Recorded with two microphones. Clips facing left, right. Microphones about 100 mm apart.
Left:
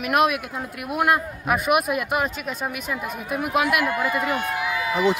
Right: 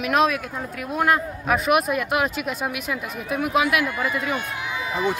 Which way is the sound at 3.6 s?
55° left (ahead or behind).